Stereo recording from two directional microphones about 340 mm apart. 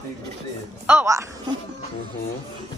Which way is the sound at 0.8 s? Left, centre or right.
Centre.